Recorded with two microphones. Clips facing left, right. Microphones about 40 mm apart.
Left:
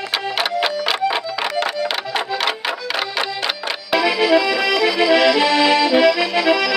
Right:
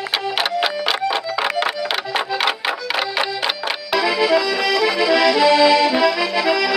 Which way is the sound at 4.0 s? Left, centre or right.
Left.